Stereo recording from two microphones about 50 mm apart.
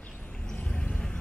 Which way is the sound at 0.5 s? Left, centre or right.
Left.